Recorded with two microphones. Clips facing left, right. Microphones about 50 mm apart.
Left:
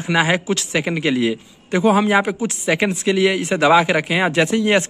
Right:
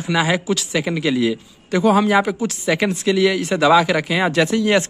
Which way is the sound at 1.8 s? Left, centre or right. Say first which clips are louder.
Even; left.